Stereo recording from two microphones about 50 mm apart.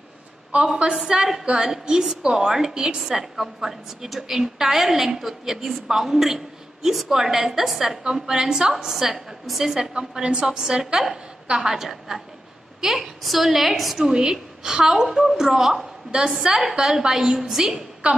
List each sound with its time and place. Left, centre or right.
0.5 s a woman's voice: right
0.9 s a woman's voice: centre
16.1 s a woman's voice: centre